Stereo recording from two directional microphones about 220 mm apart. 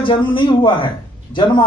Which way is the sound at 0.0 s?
20° left (ahead or behind).